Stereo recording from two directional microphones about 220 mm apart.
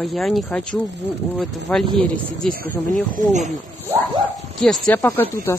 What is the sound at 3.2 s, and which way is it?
Speech, 35° right (ahead or behind).